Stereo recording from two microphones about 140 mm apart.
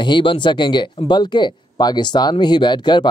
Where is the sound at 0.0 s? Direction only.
35° left (ahead or behind).